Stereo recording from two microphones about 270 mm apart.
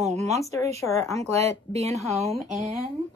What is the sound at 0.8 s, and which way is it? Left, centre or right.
Speech, centre.